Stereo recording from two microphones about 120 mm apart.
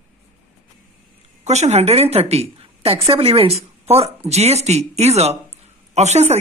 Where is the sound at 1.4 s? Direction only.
70° right (ahead or behind).